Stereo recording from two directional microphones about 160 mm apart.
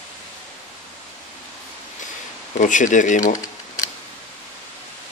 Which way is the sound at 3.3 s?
20° left (ahead or behind).